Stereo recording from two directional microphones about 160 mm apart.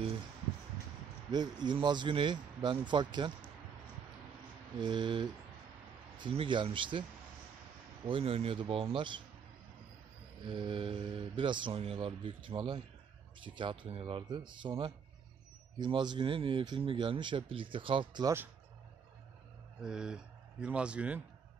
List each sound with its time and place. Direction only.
1.3 s speech: 25° right (ahead or behind)
4.7 s speech: 30° right (ahead or behind)
8.1 s speech: 35° right (ahead or behind)
10.4 s speech: 30° right (ahead or behind)
19.8 s a man's voice: 5° right (ahead or behind)